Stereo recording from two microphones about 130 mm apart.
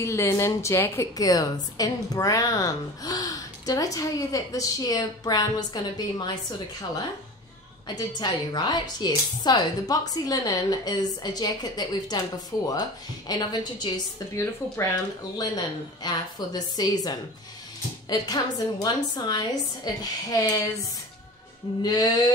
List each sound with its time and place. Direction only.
0.0 s a woman's voice: 20° left (ahead or behind)
8.2 s a woman's voice: 30° left (ahead or behind)
13.3 s a woman's voice: 35° left (ahead or behind)
21.8 s a woman's voice: 30° left (ahead or behind)